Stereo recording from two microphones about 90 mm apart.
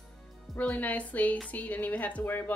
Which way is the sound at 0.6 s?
15° left (ahead or behind).